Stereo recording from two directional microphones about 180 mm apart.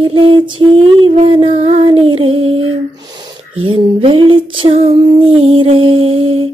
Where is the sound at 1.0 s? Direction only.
30° right (ahead or behind).